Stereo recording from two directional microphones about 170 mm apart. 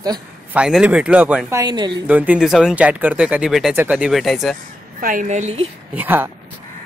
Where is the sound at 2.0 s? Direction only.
10° right (ahead or behind).